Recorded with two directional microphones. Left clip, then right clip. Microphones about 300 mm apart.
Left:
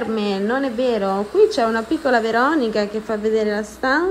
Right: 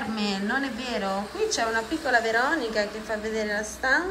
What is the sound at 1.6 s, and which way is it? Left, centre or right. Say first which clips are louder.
Speech: left 7 dB; left.